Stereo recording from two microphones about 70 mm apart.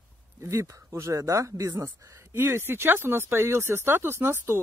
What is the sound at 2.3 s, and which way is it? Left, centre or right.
Speech, right.